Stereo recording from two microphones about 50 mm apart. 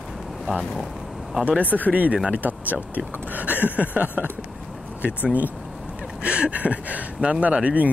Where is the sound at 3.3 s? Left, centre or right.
Right.